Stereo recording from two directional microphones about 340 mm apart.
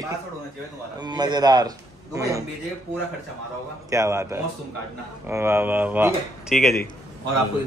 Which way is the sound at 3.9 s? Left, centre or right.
Centre.